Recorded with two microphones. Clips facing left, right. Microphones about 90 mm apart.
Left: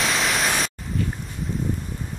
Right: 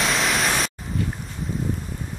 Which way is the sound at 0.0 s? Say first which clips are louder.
Right 1 dB; centre (ahead or behind).